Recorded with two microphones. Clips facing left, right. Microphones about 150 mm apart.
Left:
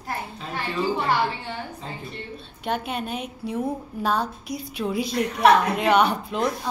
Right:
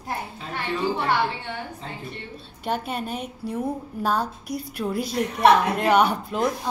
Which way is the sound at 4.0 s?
5° right (ahead or behind).